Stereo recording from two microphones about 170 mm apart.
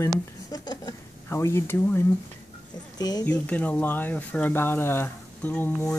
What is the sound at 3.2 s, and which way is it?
Speech, 10° left (ahead or behind).